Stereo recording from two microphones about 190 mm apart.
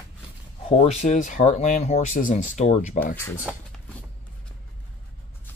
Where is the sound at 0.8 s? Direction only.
35° left (ahead or behind).